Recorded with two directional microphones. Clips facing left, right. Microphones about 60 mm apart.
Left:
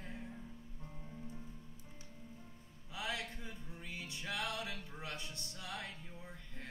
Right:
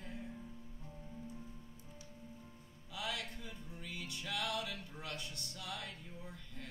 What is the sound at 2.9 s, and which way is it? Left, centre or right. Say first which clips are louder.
Music: left 1 dB; left.